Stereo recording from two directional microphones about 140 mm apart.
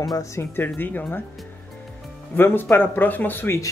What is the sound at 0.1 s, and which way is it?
Speech, 20° left (ahead or behind).